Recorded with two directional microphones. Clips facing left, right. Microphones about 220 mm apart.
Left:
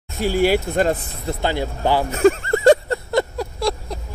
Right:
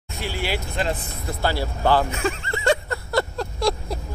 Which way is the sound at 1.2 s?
20° left (ahead or behind).